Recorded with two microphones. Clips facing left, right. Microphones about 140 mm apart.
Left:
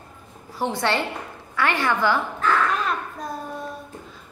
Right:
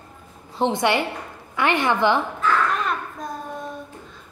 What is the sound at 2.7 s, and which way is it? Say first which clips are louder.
Children playing: even; centre (ahead or behind).